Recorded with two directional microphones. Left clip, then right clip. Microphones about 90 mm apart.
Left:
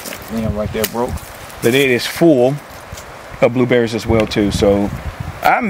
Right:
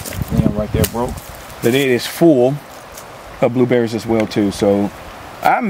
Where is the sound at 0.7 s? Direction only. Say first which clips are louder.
Left 1 dB; 5° left (ahead or behind).